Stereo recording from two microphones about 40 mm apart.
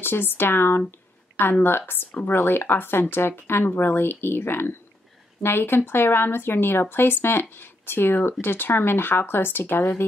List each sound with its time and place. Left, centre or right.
0.0 s speech: left